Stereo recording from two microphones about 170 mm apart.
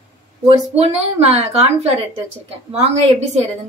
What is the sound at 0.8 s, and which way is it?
Speech, 40° right (ahead or behind).